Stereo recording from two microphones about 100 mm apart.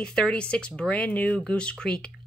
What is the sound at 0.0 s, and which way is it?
Speech, 10° left (ahead or behind).